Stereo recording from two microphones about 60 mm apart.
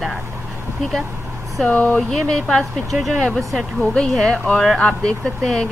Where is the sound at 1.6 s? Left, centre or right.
Left.